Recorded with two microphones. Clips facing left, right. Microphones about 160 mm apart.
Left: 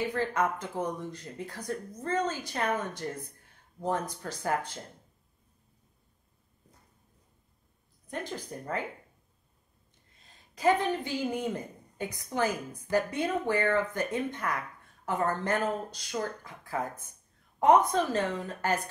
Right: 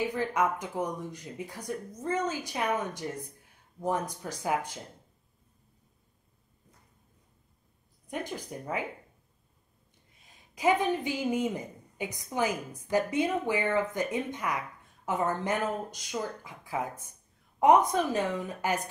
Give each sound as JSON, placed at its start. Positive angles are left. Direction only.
{"t": 0.0, "sound": "speech", "side_deg": -15}
{"t": 4.1, "sound": "speech", "side_deg": -15}
{"t": 8.1, "sound": "speech", "side_deg": -15}
{"t": 10.2, "sound": "a woman's voice", "side_deg": -15}